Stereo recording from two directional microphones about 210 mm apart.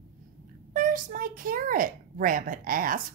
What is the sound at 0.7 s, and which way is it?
A child's voice, 40° right (ahead or behind).